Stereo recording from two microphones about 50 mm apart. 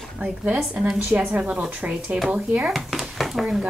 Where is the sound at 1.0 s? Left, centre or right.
Right.